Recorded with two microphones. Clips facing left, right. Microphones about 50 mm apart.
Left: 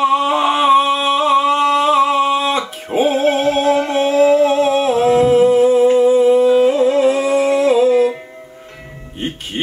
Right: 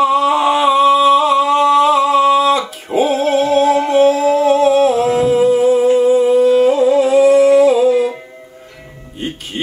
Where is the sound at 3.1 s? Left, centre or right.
Left.